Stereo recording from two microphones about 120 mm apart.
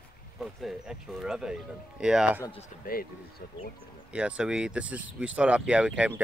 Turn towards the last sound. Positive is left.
turn(degrees=-10)  # may be behind; listen again after turning